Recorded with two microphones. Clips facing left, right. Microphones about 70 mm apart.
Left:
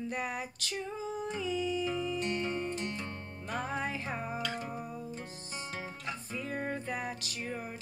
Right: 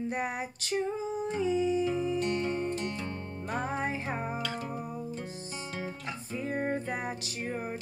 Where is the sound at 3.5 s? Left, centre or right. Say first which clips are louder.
Right 3 dB; right.